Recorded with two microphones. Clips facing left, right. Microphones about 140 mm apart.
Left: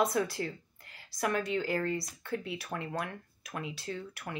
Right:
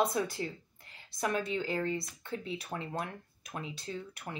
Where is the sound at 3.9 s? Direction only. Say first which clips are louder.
Left 1 dB; 55° left (ahead or behind).